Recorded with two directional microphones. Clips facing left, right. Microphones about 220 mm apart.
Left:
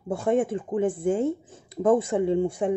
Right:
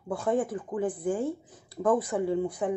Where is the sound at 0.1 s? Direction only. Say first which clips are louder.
Left 4 dB; 25° left (ahead or behind).